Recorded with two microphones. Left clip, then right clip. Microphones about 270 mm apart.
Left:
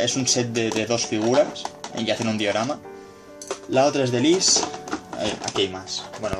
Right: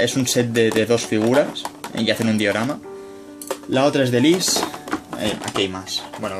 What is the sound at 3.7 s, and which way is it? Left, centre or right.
Speech, right.